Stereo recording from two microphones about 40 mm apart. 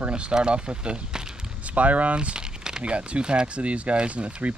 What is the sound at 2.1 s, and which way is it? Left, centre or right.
Crumpling, right.